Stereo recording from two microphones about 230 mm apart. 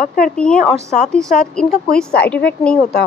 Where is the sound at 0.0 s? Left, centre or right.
Left.